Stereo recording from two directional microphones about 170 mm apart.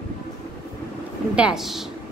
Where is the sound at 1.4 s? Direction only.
5° right (ahead or behind).